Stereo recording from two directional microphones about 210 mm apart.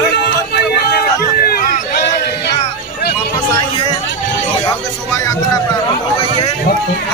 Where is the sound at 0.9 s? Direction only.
45° left (ahead or behind).